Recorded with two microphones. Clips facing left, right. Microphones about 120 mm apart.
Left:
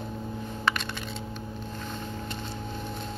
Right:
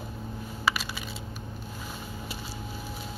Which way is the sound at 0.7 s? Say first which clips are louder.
Even; 5° right (ahead or behind).